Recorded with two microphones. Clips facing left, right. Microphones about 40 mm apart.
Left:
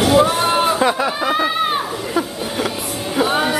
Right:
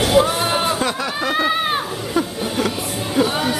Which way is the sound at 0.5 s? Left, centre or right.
Centre.